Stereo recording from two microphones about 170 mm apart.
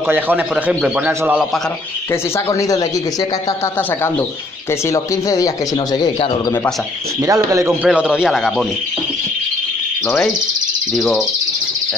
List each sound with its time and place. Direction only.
0.0 s a man's voice: 10° right (ahead or behind)
2.3 s speech: 15° left (ahead or behind)
4.8 s speech: 20° left (ahead or behind)
7.2 s a man's voice: 20° right (ahead or behind)
7.8 s a man's voice: 5° right (ahead or behind)
10.0 s a man's voice: 5° left (ahead or behind)